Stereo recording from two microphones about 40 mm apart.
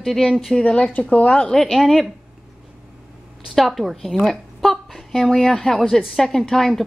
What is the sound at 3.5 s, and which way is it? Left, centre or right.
A woman's voice, centre.